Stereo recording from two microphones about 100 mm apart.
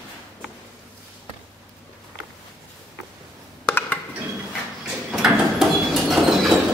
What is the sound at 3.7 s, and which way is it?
Music, 20° left (ahead or behind).